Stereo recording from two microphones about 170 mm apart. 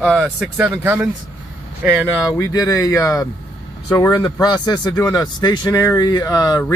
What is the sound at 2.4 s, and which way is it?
Speech, 20° left (ahead or behind).